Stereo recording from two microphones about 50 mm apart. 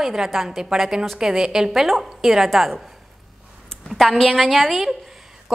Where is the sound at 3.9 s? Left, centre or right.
Centre.